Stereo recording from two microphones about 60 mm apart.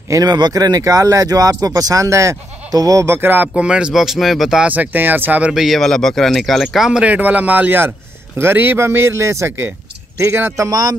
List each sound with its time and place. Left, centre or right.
0.1 s speech: right
2.0 s speech: right
2.7 s speech: right
3.1 s speech: right
3.5 s speech: centre
3.9 s speech: centre
4.6 s speech: right
5.5 s speech: centre
5.8 s speech: centre
6.9 s a man's voice: right
10.6 s music: right